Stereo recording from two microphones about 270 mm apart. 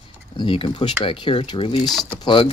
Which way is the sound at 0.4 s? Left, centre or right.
Centre.